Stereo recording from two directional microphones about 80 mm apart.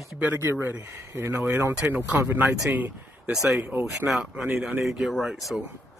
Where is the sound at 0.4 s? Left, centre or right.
Right.